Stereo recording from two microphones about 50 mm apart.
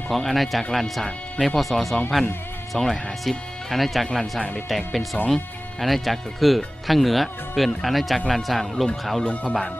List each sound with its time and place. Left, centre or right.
0.1 s speech: centre
9.2 s speech: left